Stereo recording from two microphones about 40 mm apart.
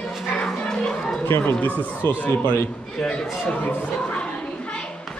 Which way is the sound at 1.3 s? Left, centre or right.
Left.